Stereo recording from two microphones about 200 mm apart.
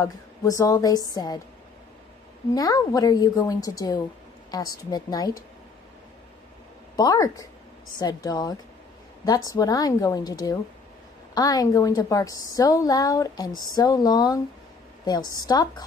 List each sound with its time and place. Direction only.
0.0 s a woman's voice: 15° left (ahead or behind)
2.5 s a woman's voice: 20° left (ahead or behind)
7.0 s a woman's voice: 20° left (ahead or behind)